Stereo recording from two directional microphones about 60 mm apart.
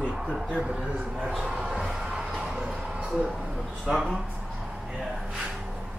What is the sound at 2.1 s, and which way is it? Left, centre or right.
Music, centre.